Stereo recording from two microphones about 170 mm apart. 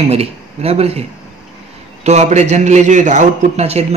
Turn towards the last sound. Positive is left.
turn(degrees=-40)  # may be behind; listen again after turning